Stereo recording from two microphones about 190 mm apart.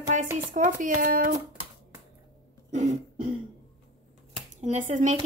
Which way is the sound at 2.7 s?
40° right (ahead or behind).